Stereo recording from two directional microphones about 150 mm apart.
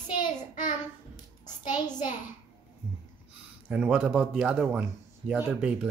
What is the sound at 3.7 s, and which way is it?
Speech, 10° right (ahead or behind).